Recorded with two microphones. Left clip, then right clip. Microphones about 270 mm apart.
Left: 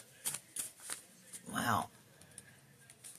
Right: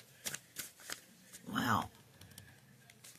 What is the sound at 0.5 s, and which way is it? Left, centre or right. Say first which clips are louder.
Shuffling cards: right 1 dB; right.